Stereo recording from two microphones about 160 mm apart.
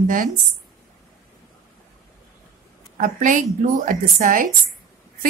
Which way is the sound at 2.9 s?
55° right (ahead or behind).